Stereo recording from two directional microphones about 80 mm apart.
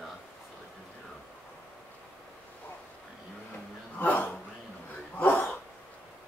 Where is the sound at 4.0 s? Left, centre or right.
Left.